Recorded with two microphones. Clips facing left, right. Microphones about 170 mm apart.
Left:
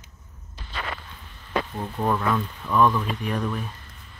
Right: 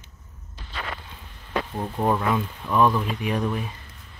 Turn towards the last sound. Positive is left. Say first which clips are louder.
# right 1 dB
turn(degrees=-10)  # may be behind; listen again after turning